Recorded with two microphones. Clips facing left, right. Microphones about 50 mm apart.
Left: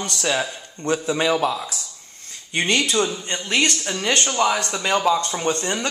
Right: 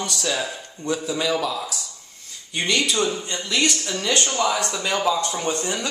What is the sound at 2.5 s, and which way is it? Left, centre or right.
Speech, left.